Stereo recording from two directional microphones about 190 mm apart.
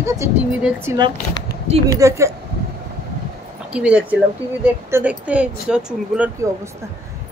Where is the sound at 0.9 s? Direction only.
15° right (ahead or behind).